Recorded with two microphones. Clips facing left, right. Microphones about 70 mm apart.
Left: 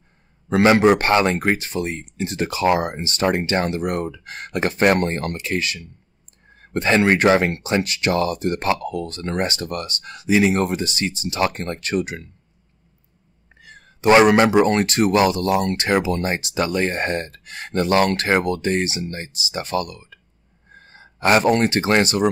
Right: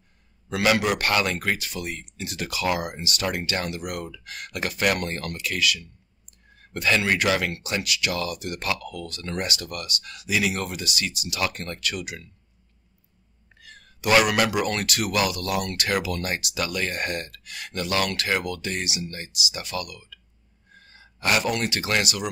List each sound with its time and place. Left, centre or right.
0.5 s speech: left
13.6 s speech: left